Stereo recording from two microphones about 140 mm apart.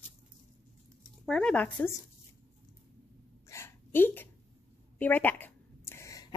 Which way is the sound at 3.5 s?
15° left (ahead or behind).